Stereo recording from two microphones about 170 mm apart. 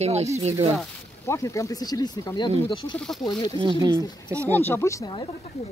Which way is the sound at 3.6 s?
25° right (ahead or behind).